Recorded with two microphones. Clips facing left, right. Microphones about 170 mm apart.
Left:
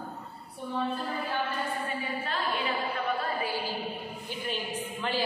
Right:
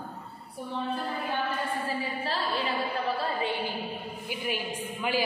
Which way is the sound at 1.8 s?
35° right (ahead or behind).